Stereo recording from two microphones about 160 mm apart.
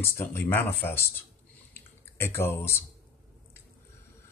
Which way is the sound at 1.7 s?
15° left (ahead or behind).